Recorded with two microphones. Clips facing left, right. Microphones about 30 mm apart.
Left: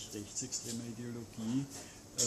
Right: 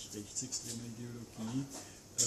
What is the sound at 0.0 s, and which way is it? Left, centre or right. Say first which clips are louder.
Speech: left 1 dB; centre.